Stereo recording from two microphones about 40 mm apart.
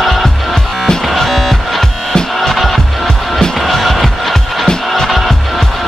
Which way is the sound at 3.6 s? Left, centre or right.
Centre.